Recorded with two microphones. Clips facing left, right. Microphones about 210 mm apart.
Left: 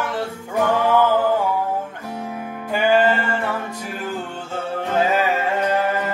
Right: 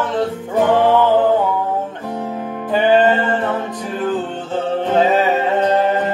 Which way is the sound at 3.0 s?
20° right (ahead or behind).